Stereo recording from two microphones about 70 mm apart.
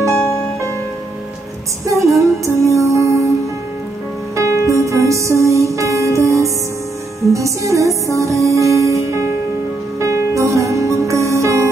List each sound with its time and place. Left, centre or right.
0.0 s music: right
1.9 s music: right
4.4 s music: right